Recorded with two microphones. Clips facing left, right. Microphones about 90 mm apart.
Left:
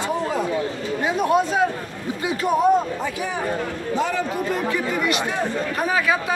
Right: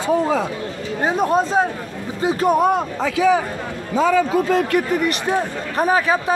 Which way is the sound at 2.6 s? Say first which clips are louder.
Even; 80° right.